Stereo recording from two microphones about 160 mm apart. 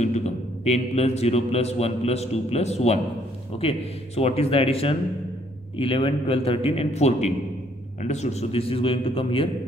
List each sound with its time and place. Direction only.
0.0 s a man's voice: 45° left (ahead or behind)